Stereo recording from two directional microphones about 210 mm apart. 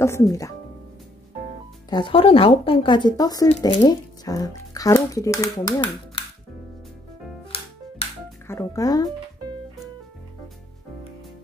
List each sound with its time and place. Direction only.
0.0 s speech: 15° left (ahead or behind)
1.9 s speech: 25° left (ahead or behind)
8.5 s speech: 15° left (ahead or behind)